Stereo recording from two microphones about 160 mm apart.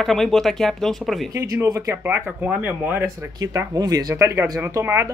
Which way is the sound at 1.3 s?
20° right (ahead or behind).